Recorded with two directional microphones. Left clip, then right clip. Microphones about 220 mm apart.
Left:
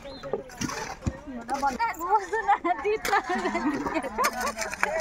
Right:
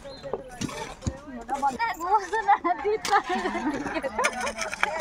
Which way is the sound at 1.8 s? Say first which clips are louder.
Right 1 dB; centre (ahead or behind).